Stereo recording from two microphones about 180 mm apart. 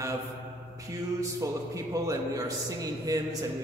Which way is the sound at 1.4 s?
20° right (ahead or behind).